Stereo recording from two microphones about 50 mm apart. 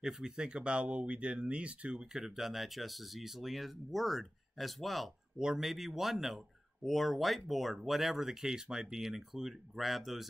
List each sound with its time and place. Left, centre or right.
0.0 s speech: centre
2.1 s speech: centre
5.4 s speech: centre